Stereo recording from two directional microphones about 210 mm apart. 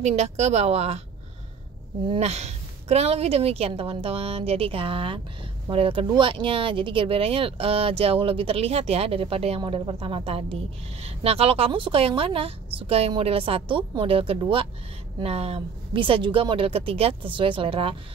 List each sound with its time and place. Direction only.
0.0 s a woman's voice: 30° right (ahead or behind)
2.0 s speech: 30° right (ahead or behind)